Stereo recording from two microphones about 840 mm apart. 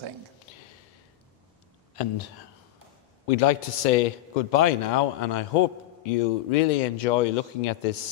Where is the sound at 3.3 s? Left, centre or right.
Left.